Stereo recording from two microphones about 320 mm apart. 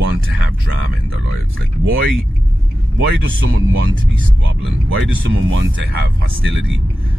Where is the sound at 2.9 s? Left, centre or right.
Right.